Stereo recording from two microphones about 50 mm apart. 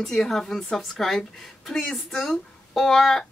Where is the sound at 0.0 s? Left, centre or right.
Centre.